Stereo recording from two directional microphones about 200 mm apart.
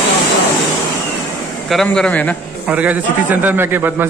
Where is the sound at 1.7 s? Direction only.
Centre (ahead or behind).